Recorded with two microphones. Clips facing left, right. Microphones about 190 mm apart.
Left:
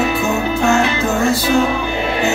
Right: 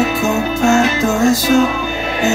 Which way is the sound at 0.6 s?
40° right (ahead or behind).